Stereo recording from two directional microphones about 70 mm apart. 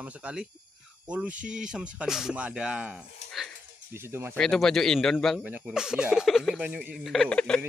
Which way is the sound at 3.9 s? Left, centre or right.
Right.